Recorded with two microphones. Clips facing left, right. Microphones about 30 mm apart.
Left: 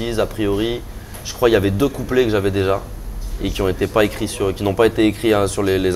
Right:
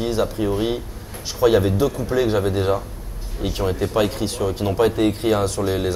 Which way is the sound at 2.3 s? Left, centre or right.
Left.